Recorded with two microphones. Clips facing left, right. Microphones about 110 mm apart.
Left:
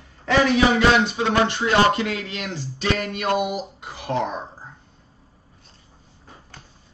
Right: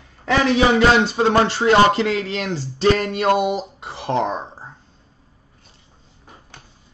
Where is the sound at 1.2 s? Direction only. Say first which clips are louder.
Right 4 dB; 35° right (ahead or behind).